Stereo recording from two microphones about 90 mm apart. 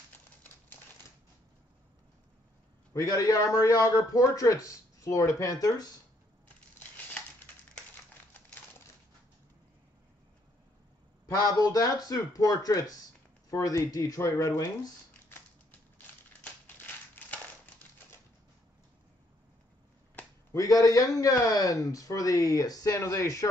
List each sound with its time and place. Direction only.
0.1 s typewriter: 20° left (ahead or behind)
2.9 s a man's voice: 40° left (ahead or behind)
11.2 s a man's voice: 40° left (ahead or behind)
16.6 s a sound: 20° left (ahead or behind)
20.5 s a man's voice: 40° left (ahead or behind)